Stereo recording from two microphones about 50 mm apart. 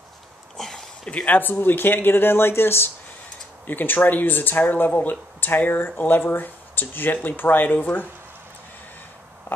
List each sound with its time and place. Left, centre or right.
0.6 s a sound: centre
1.1 s speech: left
3.6 s speech: left